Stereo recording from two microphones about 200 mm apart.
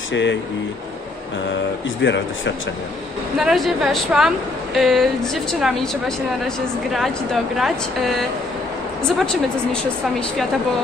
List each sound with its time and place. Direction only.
0.1 s speech: 65° left (ahead or behind)
3.3 s a woman's voice: centre (ahead or behind)